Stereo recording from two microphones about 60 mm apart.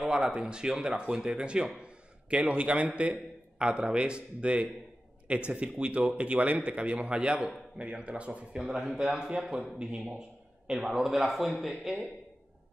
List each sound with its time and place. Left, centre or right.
0.1 s a man's voice: centre
1.8 s a sound: centre
3.0 s a man's voice: centre
8.5 s a man's voice: centre